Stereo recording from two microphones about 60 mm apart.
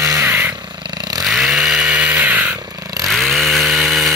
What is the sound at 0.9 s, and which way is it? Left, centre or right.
Chainsaw, right.